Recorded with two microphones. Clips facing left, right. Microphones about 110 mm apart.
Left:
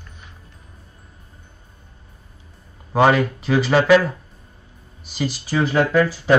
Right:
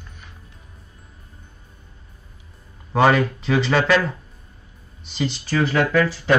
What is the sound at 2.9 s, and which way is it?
Speech, 10° left (ahead or behind).